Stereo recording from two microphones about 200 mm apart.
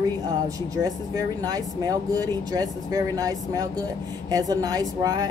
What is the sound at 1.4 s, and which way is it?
Speech, 20° right (ahead or behind).